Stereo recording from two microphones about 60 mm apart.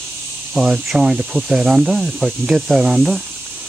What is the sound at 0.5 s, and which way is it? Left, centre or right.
Speech, centre.